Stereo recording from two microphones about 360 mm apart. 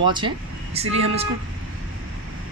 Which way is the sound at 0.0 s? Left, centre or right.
Centre.